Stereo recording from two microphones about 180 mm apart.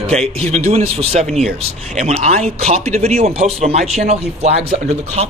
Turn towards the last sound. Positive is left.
turn(degrees=-35)  # may be behind; listen again after turning